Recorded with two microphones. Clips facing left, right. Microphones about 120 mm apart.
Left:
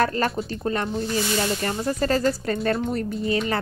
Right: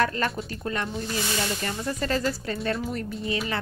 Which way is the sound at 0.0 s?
35° left (ahead or behind).